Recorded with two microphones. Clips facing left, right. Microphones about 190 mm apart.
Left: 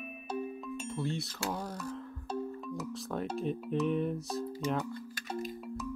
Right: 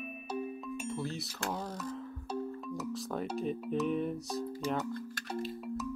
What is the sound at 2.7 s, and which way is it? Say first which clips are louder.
Speech: right 2 dB; centre (ahead or behind).